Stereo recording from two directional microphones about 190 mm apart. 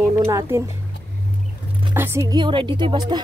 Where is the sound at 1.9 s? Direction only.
10° right (ahead or behind).